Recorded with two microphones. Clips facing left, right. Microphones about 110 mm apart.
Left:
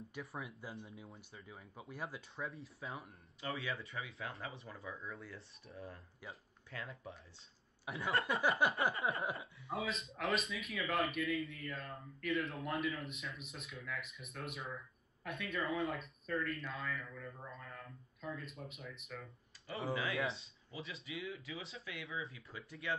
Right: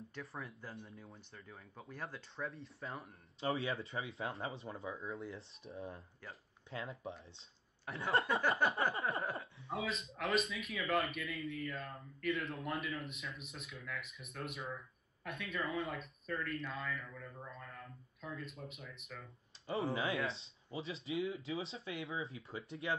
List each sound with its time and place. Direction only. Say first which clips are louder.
0.1 s speech: left 1 dB; 5° left (ahead or behind)
3.3 s speech: right 5 dB; 30° right (ahead or behind)
7.8 s speech: left 1 dB; centre (ahead or behind)
8.4 s a sound: even; 5° left (ahead or behind)
9.7 s speech: even; centre (ahead or behind)
19.7 s speech: right 2 dB; 25° right (ahead or behind)